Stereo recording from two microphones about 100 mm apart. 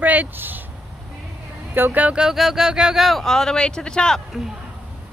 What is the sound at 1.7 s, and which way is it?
Speech, 20° right (ahead or behind).